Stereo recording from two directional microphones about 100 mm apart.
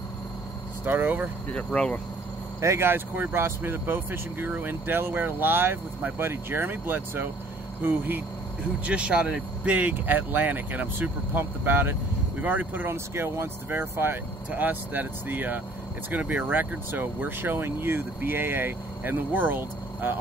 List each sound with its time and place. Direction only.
0.8 s speech: 15° right (ahead or behind)
1.5 s speech: 10° left (ahead or behind)
2.6 s speech: 25° right (ahead or behind)